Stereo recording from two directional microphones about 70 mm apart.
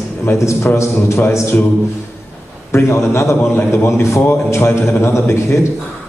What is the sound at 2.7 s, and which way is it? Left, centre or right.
A man's voice, left.